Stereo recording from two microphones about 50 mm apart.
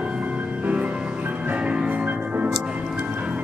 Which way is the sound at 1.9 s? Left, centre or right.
Right.